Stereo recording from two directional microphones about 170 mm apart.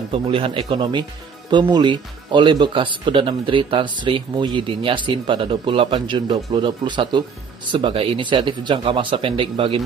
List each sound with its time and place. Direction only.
0.1 s speech: 30° right (ahead or behind)